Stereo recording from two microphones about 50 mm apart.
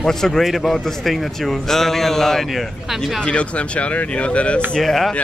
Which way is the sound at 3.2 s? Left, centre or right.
Left.